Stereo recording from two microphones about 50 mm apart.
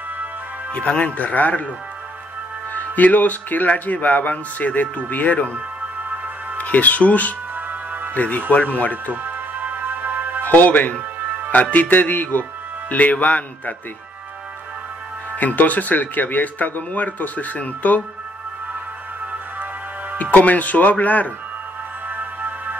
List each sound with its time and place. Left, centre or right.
0.7 s speech: left
2.7 s speech: left
6.0 s music: right
6.6 s speech: left
7.5 s music: right
8.1 s speech: left
9.1 s music: right
10.4 s speech: left
15.3 s speech: left
20.2 s speech: left
22.1 s music: right